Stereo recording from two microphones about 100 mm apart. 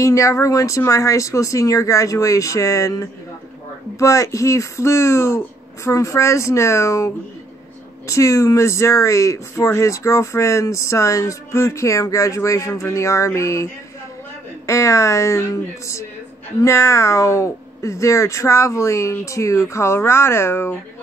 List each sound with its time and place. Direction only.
0.0 s speech: 30° left (ahead or behind)
8.1 s speech: 30° left (ahead or behind)
14.7 s speech: 30° left (ahead or behind)